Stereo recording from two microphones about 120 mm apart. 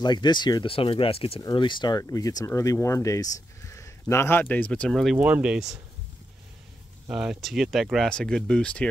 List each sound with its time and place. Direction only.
0.0 s speech: 40° left (ahead or behind); by 5.1 s 5° left (ahead or behind)
5.1 s speech: 10° right (ahead or behind)
7.1 s speech: 5° right (ahead or behind)